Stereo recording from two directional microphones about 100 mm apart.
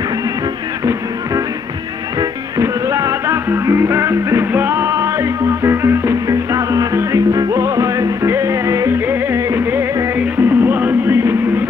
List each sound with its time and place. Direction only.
2.1 s music: 35° right (ahead or behind)